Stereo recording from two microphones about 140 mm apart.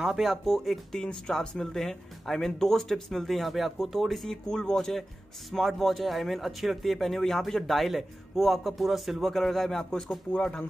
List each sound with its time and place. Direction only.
0.0 s speech: 5° right (ahead or behind)